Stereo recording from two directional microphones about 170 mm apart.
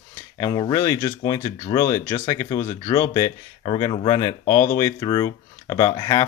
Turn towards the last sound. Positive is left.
turn(degrees=25)  # may be behind; listen again after turning